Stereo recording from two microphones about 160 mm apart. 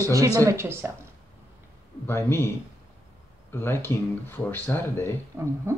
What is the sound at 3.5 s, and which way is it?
Speech, 15° left (ahead or behind).